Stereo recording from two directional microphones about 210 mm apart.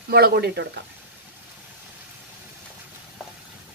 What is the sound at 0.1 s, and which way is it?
Speech, 50° right (ahead or behind).